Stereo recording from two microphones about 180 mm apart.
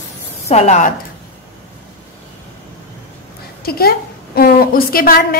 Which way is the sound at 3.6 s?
55° left (ahead or behind).